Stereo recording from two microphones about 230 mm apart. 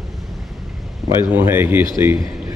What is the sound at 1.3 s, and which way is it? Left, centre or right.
A man's voice, centre.